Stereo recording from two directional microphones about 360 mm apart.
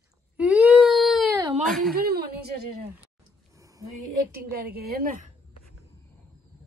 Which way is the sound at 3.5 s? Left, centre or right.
Centre.